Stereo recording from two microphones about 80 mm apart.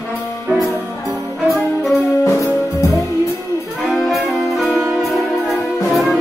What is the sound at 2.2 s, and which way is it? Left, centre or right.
Music, left.